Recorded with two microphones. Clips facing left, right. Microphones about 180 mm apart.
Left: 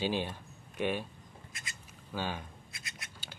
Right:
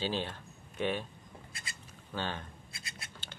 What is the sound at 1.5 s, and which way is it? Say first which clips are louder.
Speech: left 1 dB; 35° right (ahead or behind).